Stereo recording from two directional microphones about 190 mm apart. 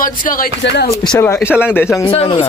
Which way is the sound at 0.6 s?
65° left (ahead or behind).